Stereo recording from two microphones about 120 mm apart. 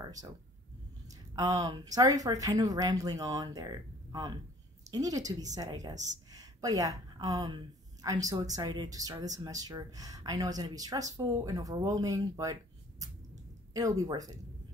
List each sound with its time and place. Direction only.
0.0 s a woman's voice: 30° right (ahead or behind)
13.7 s speech: 30° right (ahead or behind)